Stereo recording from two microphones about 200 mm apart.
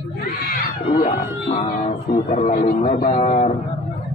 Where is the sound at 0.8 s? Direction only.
25° left (ahead or behind).